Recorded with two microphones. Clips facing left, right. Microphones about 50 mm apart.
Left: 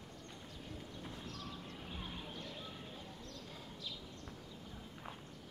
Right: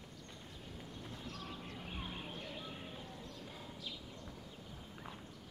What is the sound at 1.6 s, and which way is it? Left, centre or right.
Music, right.